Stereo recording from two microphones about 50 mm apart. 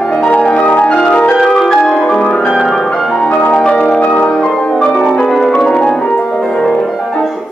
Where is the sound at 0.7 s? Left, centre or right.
Left.